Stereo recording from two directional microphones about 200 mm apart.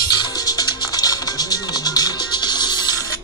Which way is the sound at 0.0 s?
20° left (ahead or behind).